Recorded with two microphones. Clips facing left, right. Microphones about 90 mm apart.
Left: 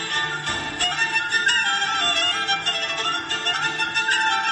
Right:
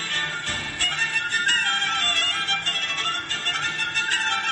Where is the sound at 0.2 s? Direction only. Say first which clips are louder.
Left 4 dB; 60° left (ahead or behind).